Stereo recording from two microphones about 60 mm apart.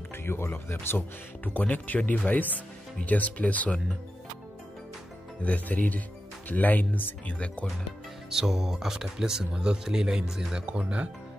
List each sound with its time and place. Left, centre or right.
0.1 s speech: left
5.4 s speech: left
8.3 s speech: centre